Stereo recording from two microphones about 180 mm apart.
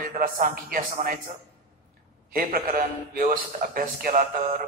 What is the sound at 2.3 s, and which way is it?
A man's voice, 50° right (ahead or behind).